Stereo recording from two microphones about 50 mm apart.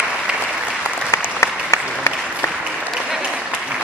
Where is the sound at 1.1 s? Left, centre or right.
Left.